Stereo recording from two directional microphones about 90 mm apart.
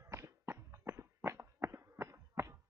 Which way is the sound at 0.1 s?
30° right (ahead or behind).